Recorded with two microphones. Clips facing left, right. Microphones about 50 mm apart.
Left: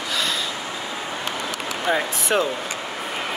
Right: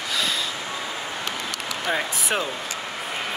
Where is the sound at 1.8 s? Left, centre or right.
Centre.